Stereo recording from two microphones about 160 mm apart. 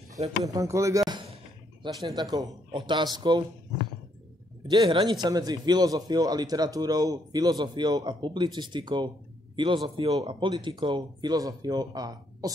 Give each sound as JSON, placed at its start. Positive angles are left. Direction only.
{"t": 0.3, "sound": "a man's voice", "side_deg": -20}
{"t": 1.1, "sound": "a sound", "side_deg": -30}
{"t": 2.9, "sound": "a man's voice", "side_deg": -25}
{"t": 4.6, "sound": "a man's voice", "side_deg": -30}